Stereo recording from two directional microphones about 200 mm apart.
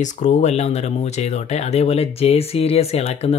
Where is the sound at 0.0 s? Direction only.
35° left (ahead or behind).